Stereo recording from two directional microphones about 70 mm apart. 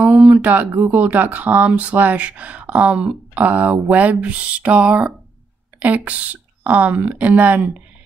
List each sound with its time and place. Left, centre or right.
0.0 s speech: right